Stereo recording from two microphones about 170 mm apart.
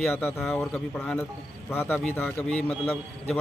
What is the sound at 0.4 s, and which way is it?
A man's voice, centre (ahead or behind).